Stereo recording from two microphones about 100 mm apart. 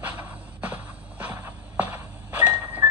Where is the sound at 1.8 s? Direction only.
15° right (ahead or behind).